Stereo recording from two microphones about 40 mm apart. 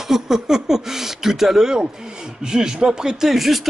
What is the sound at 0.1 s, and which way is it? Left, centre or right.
A man's voice, centre.